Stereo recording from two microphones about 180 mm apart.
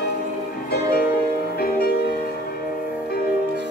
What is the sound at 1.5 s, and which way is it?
Music, 60° left (ahead or behind).